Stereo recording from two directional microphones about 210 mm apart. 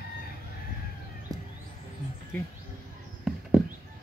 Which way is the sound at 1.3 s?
15° right (ahead or behind).